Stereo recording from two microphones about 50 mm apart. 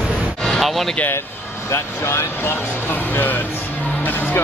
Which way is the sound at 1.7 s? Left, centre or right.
Left.